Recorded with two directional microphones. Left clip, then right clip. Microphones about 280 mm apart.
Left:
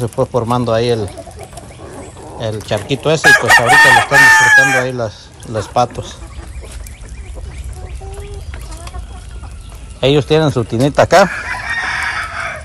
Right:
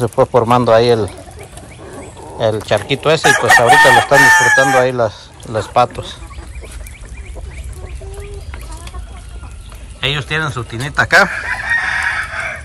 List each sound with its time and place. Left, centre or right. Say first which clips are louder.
0.0 s speech: right 4 dB; centre
2.3 s speech: right 5 dB; centre
3.2 s speech: left 2 dB; centre
4.7 s speech: right 4 dB; centre
9.9 s speech: left 6 dB; left
11.3 s chicken: right 3 dB; left